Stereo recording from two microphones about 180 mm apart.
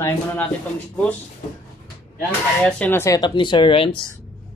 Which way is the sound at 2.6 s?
10° left (ahead or behind).